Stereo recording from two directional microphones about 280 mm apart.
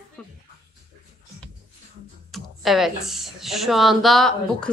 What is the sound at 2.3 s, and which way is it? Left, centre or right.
A woman's voice, centre.